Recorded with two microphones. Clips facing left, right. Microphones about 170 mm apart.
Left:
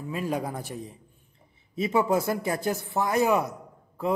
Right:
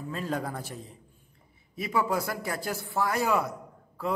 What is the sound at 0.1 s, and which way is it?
Speech, 15° left (ahead or behind).